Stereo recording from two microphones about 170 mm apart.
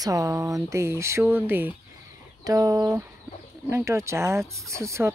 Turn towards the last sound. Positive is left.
turn(degrees=-15)  # may be behind; listen again after turning